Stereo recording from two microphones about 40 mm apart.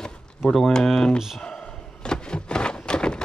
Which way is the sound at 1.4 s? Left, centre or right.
Centre.